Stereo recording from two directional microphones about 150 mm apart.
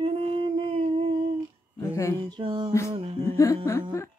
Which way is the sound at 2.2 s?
35° right (ahead or behind).